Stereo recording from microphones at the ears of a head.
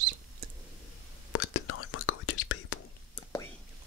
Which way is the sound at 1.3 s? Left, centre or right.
Left.